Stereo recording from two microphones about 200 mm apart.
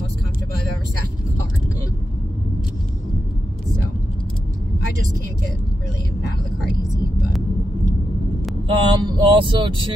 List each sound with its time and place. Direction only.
8.6 s vehicle: 25° right (ahead or behind)